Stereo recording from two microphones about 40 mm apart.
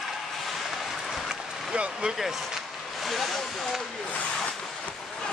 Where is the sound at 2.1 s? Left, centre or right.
Centre.